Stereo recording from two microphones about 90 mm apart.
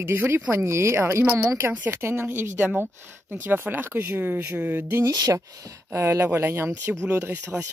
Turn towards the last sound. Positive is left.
turn(degrees=-20)  # may be behind; listen again after turning